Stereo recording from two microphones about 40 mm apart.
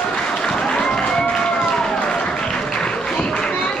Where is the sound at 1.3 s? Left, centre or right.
Left.